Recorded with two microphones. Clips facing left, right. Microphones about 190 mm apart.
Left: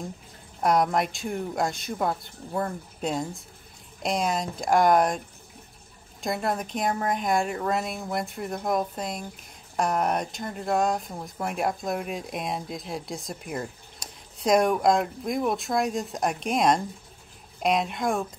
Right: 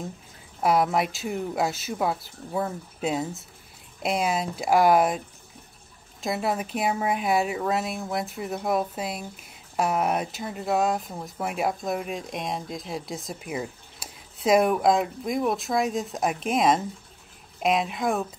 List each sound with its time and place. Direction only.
0.6 s speech: 5° right (ahead or behind)
6.2 s speech: 5° right (ahead or behind)